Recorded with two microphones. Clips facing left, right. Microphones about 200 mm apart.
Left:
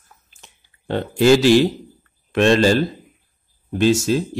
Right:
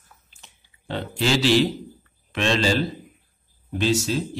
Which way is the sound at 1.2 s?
50° left (ahead or behind).